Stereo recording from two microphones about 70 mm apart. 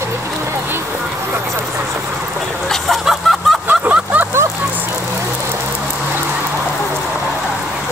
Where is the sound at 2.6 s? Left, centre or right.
Centre.